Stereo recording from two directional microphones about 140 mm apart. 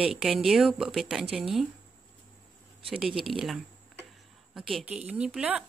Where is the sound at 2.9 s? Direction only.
5° right (ahead or behind).